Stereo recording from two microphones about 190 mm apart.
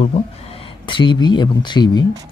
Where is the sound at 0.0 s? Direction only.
30° left (ahead or behind).